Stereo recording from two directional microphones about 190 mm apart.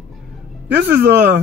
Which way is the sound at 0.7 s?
60° right (ahead or behind).